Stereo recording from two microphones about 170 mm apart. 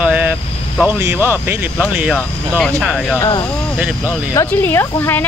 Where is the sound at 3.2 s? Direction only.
25° left (ahead or behind).